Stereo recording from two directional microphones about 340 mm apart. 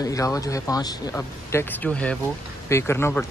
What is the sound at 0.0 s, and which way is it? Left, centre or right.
Speech, centre.